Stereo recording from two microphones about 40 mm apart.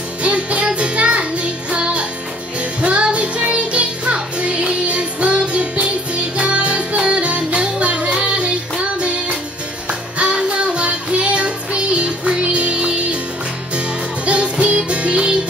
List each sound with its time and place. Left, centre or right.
0.2 s music: right